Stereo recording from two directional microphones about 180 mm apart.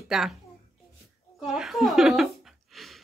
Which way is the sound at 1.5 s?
Centre (ahead or behind).